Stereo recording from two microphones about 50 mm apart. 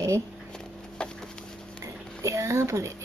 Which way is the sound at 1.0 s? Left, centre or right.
Centre.